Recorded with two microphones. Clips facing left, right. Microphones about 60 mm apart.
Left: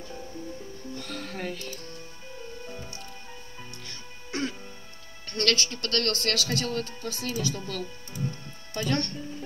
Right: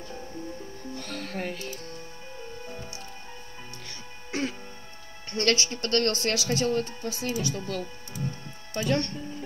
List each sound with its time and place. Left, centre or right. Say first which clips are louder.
0.9 s music: right 2 dB; centre
5.3 s speech: right 1 dB; right